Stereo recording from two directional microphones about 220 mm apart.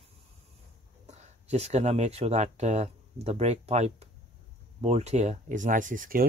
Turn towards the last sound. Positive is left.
turn(degrees=-40)  # may be behind; listen again after turning